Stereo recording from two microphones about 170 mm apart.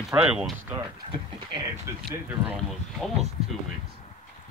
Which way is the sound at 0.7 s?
30° right (ahead or behind).